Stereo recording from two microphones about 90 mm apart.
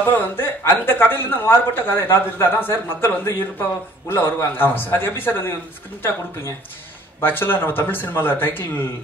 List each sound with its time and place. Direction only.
0.4 s speech: 25° left (ahead or behind)
7.2 s speech: 25° left (ahead or behind)